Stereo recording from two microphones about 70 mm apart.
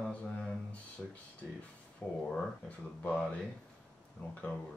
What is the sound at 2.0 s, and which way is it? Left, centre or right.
Speech, left.